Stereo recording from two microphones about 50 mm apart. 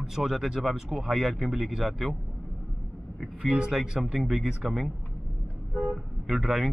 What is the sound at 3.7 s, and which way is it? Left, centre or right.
Speech, centre.